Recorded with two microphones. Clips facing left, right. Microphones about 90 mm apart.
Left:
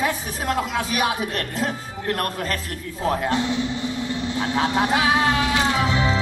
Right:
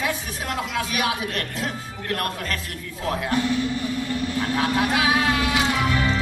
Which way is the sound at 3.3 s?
20° left (ahead or behind).